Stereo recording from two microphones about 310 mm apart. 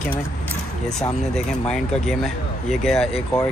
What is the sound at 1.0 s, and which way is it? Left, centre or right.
Speech, centre.